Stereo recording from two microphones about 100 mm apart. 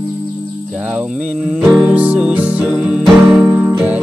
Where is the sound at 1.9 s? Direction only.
15° right (ahead or behind).